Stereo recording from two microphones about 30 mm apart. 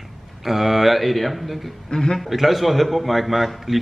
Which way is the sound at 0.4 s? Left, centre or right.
Centre.